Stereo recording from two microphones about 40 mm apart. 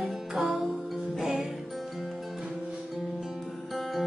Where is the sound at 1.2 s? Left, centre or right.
Centre.